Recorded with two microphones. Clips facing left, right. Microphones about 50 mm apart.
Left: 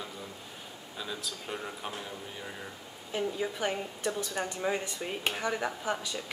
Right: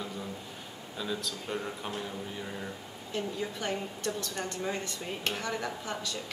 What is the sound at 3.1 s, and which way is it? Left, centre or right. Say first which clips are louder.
A woman's voice: left 2 dB; centre.